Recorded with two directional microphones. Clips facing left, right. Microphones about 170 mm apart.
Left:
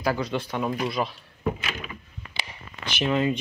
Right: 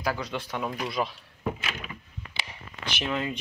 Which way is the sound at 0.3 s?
15° left (ahead or behind).